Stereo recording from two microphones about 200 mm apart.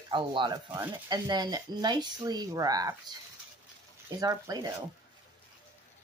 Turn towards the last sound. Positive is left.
turn(degrees=-20)  # may be behind; listen again after turning